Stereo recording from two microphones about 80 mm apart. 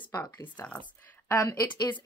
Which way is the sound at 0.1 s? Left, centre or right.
Left.